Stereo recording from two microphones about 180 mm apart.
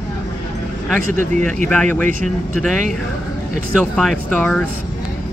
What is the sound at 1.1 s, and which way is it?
Speech, 45° right (ahead or behind).